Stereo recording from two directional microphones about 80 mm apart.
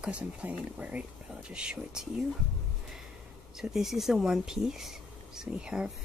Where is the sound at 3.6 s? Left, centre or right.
Centre.